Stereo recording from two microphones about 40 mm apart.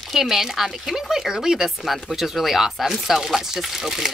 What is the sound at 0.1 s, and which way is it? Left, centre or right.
Speech, centre.